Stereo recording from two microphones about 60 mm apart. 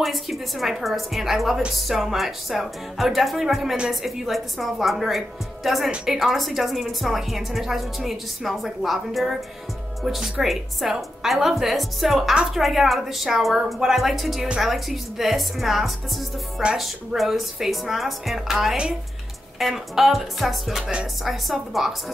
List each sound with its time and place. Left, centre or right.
0.0 s a woman's voice: centre
20.8 s speech: centre
21.2 s a woman's voice: centre